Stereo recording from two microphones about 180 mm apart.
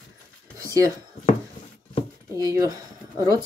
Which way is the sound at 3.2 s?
20° right (ahead or behind).